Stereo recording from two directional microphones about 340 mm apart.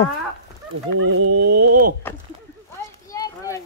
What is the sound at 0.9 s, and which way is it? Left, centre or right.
Speech, right.